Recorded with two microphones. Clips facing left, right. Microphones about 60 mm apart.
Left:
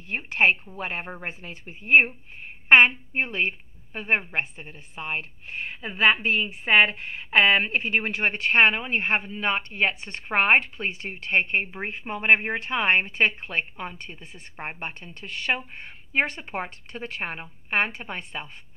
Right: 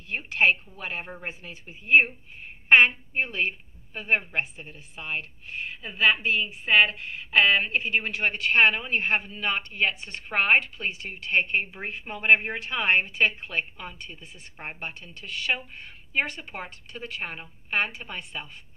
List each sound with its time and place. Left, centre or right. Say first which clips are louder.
0.1 s speech: left 1 dB; left
3.2 s speech: left 1 dB; left